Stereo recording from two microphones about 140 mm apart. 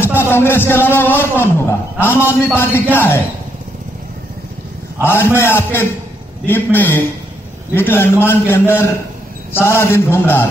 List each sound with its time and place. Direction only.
0.0 s a man's voice: 15° left (ahead or behind)
5.0 s a man's voice: 15° left (ahead or behind)